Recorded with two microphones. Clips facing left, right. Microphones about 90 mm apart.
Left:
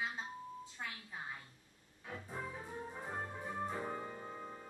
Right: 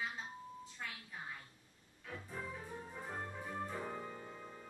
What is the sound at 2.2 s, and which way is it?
Music, 20° left (ahead or behind).